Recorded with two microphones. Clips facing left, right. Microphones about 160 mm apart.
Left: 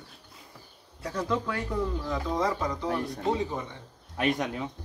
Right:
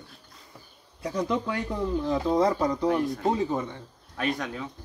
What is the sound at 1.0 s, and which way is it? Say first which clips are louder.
Speech: right 2 dB; 15° right (ahead or behind).